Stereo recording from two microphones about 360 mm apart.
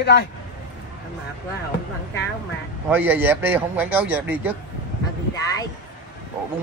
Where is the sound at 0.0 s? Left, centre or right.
Left.